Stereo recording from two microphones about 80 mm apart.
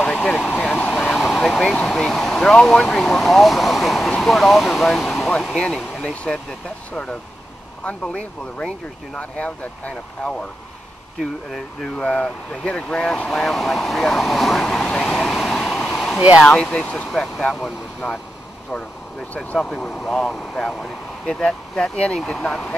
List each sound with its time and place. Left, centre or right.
0.0 s vehicle: centre
1.1 s vehicle: centre
1.9 s speech: centre
7.8 s speech: centre
12.0 s speech: centre
15.9 s a sound: centre
16.4 s speech: centre
17.5 s speech: centre
19.3 s speech: centre